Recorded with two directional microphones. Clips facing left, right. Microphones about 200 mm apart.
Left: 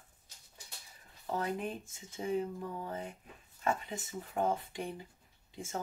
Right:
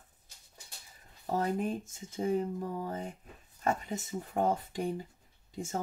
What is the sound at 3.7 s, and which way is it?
Speech, 40° right (ahead or behind).